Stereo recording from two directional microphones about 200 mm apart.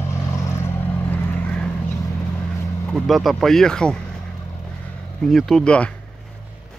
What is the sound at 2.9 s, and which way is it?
Speech, centre (ahead or behind).